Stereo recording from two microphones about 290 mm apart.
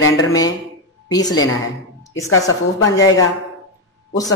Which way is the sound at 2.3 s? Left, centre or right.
Left.